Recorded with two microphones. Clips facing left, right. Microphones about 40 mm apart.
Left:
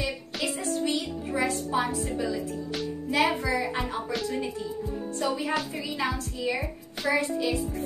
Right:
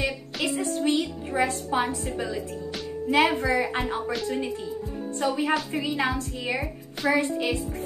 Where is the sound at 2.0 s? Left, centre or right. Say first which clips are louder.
Even; right.